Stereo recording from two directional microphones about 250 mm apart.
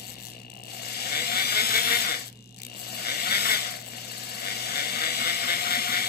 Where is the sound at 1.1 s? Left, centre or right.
Left.